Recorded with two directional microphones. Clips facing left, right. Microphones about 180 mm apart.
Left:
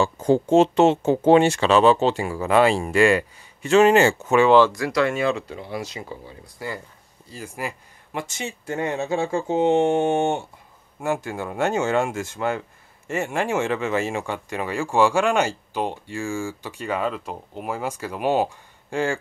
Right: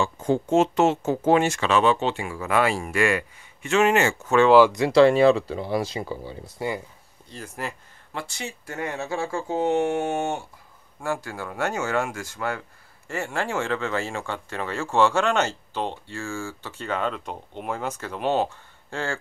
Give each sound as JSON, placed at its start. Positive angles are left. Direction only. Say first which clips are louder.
{"t": 0.0, "sound": "speech", "louder": "left 4 dB", "side_deg": 35}
{"t": 4.5, "sound": "speech", "louder": "right 1 dB", "side_deg": -10}
{"t": 4.7, "sound": "speech", "louder": "right 6 dB", "side_deg": -25}
{"t": 7.2, "sound": "speech", "louder": "left 2 dB", "side_deg": 10}